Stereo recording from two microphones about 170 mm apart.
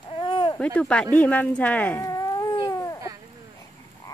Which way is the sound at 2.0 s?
20° left (ahead or behind).